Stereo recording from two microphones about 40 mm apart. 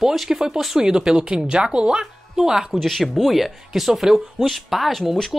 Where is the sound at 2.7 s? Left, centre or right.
Centre.